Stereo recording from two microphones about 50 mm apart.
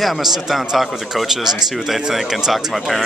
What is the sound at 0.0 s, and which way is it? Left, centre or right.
Speech, centre.